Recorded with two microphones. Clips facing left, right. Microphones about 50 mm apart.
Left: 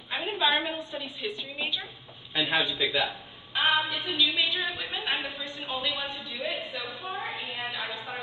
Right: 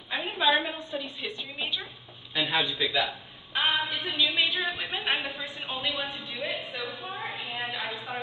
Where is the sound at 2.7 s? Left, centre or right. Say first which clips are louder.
Left 1 dB; left.